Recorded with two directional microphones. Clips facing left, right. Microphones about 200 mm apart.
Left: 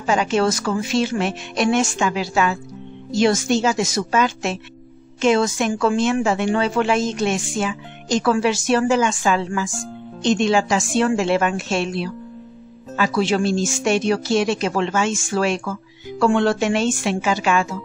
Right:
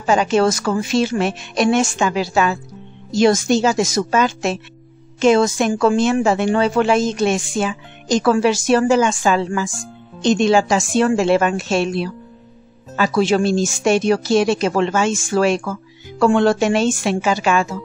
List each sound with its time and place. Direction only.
0.0 s a woman's voice: 40° right (ahead or behind)